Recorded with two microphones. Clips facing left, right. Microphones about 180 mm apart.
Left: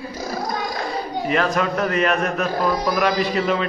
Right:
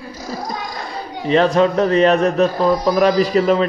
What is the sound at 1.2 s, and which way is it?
A man's voice, 30° right (ahead or behind).